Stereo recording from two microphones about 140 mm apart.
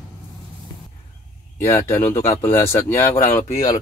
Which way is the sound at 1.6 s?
15° left (ahead or behind).